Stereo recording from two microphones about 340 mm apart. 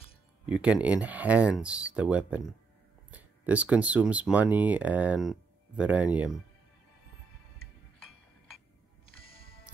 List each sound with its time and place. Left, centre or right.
0.5 s speech: centre
9.0 s music: centre